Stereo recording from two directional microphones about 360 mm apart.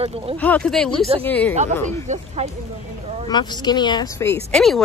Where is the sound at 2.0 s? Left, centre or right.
Centre.